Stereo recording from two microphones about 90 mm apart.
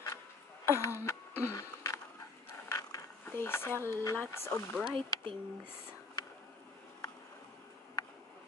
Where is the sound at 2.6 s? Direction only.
35° left (ahead or behind).